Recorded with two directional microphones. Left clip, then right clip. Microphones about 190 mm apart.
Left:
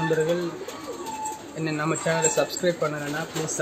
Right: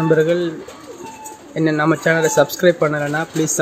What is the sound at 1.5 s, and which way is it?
Speech, 30° right (ahead or behind).